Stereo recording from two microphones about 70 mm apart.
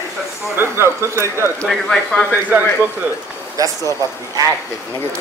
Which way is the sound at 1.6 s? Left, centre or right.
Centre.